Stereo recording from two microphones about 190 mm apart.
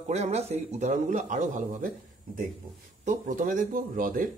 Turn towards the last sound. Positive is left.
turn(degrees=-45)  # may be behind; listen again after turning